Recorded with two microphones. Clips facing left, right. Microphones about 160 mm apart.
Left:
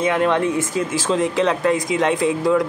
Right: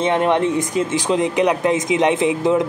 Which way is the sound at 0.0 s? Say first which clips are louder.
Right 1 dB; 20° right (ahead or behind).